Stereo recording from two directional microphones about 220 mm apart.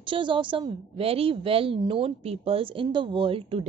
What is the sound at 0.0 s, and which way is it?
A woman's voice, 20° right (ahead or behind).